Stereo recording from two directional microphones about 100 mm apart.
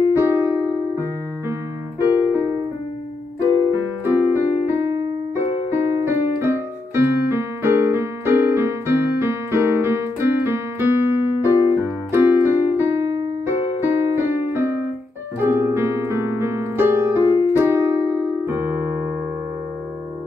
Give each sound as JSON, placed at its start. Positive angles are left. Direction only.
{"t": 0.1, "sound": "music", "side_deg": -25}
{"t": 2.0, "sound": "keyboard", "side_deg": -20}
{"t": 3.4, "sound": "music", "side_deg": 40}
{"t": 3.7, "sound": "music", "side_deg": -20}
{"t": 5.3, "sound": "keyboard", "side_deg": -25}
{"t": 15.3, "sound": "piano", "side_deg": -25}
{"t": 17.5, "sound": "electric piano", "side_deg": -25}